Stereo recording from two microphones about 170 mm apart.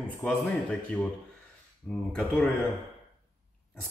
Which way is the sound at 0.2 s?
5° left (ahead or behind).